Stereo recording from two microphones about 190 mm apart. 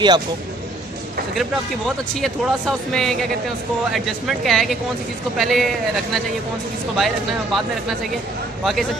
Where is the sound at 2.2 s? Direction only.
Centre (ahead or behind).